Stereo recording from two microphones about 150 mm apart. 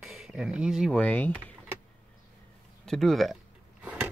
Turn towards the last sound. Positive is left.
turn(degrees=-10)  # may be behind; listen again after turning